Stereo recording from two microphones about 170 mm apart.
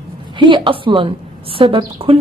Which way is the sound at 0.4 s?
30° right (ahead or behind).